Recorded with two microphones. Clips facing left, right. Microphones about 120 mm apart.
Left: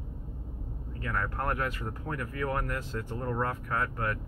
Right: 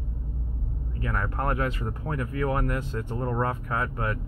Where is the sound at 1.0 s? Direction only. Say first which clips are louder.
Right 3 dB; 20° right (ahead or behind).